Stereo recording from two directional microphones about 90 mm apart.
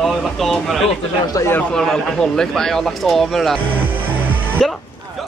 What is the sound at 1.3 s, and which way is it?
Speech, 40° left (ahead or behind).